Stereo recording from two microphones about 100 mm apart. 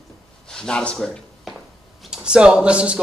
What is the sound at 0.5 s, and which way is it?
Speech, 5° left (ahead or behind).